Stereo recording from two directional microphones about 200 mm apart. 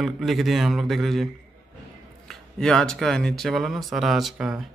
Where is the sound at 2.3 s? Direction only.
5° left (ahead or behind).